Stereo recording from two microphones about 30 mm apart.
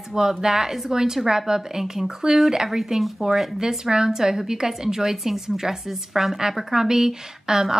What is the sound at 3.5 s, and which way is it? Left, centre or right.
A woman's voice, right.